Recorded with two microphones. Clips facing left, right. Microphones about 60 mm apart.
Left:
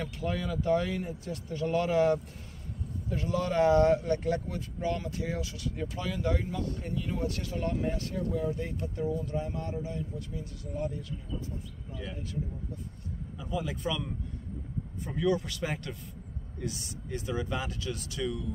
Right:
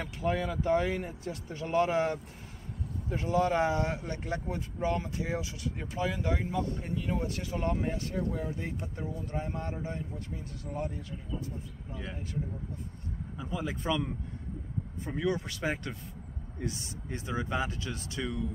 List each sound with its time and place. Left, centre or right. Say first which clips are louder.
0.0 s speech: right 2 dB; right
9.2 s speech: left 2 dB; right
13.4 s speech: left 2 dB; right